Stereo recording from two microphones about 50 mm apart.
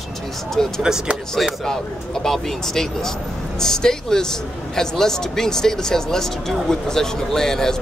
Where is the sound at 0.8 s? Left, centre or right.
Centre.